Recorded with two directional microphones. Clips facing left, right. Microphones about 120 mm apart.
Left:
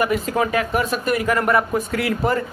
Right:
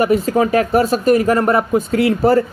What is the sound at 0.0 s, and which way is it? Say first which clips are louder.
Speech: right 6 dB; 35° right (ahead or behind).